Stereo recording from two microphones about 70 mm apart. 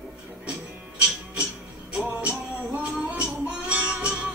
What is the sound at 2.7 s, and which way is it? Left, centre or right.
Music, centre.